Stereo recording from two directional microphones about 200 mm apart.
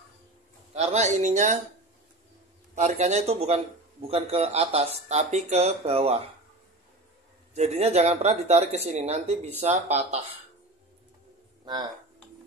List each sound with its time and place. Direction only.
0.7 s speech: 35° right (ahead or behind)
2.7 s speech: 35° right (ahead or behind)
7.5 s speech: 35° right (ahead or behind)
11.6 s speech: 20° right (ahead or behind)